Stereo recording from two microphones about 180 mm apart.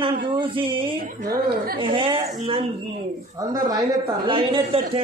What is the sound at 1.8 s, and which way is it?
Speech, 30° right (ahead or behind).